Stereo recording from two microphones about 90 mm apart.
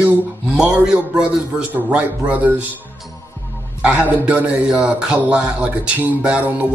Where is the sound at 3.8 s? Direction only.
15° right (ahead or behind).